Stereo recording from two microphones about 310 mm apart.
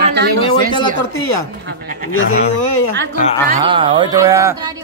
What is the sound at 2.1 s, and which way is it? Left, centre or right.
Speech, left.